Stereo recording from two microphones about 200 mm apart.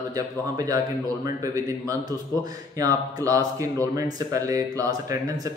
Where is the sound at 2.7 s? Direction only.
15° right (ahead or behind).